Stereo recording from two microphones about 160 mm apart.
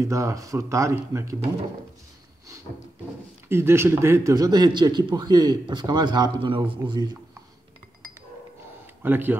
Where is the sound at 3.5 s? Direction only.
15° right (ahead or behind).